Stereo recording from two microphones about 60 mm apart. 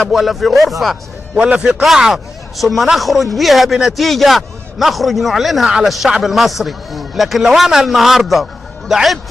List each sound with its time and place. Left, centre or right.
0.1 s a man's voice: centre
1.4 s a man's voice: right
1.7 s a man's voice: centre